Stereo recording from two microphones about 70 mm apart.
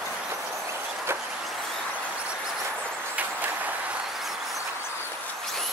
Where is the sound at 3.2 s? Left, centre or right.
Right.